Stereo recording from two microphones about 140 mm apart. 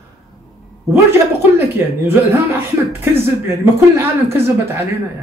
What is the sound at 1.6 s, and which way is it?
Speech, 20° right (ahead or behind).